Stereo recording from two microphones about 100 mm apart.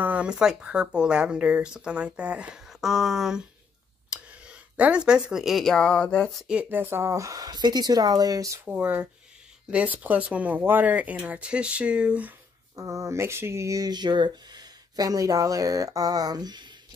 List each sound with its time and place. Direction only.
0.0 s speech: 15° right (ahead or behind); by 6.4 s 10° left (ahead or behind)
6.4 s speech: 15° right (ahead or behind); by 8.5 s 35° right (ahead or behind)
8.6 s speech: 15° right (ahead or behind)
12.7 s speech: 30° right (ahead or behind)